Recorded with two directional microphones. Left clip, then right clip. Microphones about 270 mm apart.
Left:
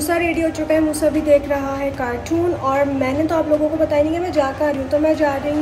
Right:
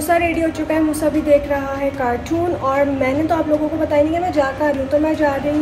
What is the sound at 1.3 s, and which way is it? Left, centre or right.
A woman's voice, centre.